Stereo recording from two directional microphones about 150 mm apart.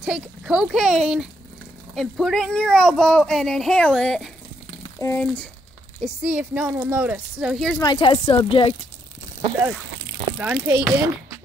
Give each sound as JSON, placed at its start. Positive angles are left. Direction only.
{"t": 0.0, "sound": "speech", "side_deg": -5}
{"t": 6.2, "sound": "speech", "side_deg": -10}
{"t": 7.8, "sound": "speech", "side_deg": 35}
{"t": 10.4, "sound": "speech", "side_deg": -10}